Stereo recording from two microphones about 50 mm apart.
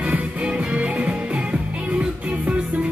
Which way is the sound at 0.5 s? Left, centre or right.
Right.